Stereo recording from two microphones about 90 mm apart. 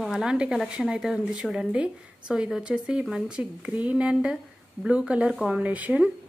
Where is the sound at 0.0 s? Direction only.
5° right (ahead or behind).